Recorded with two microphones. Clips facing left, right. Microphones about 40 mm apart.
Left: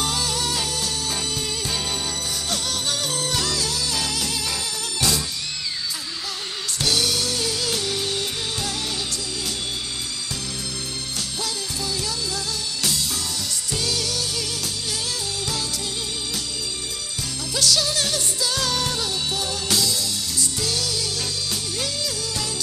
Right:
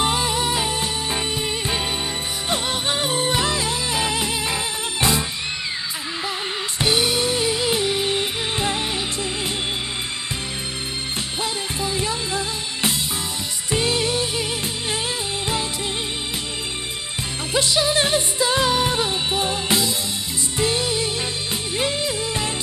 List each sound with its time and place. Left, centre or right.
0.0 s music: right
6.8 s music: right
11.4 s music: right
17.6 s music: right